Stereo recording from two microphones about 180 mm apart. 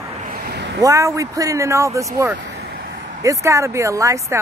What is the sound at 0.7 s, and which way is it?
Speech, 20° right (ahead or behind).